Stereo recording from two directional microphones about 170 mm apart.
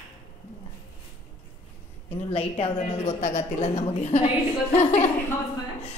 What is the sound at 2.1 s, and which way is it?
A woman's voice, 35° left (ahead or behind).